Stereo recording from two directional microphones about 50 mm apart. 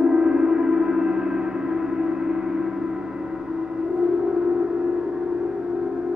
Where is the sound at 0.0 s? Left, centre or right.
Centre.